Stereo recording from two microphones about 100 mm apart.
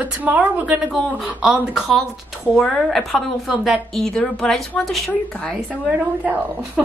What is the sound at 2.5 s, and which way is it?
Speech, centre (ahead or behind).